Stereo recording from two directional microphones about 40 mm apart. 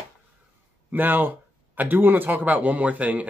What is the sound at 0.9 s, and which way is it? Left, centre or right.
Speech, right.